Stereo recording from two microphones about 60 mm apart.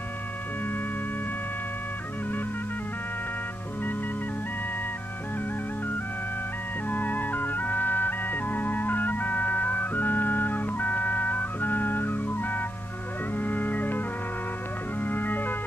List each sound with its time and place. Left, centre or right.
6.9 s music: left
13.4 s organ: left